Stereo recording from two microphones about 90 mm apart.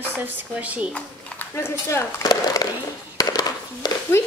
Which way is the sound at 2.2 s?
45° left (ahead or behind).